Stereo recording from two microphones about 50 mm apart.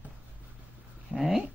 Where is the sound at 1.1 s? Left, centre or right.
Centre.